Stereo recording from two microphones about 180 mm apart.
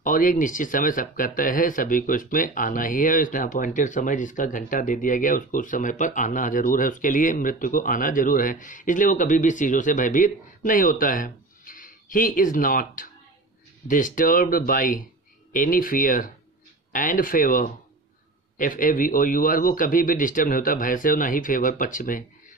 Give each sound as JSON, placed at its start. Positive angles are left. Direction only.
{"t": 0.0, "sound": "speech", "side_deg": 50}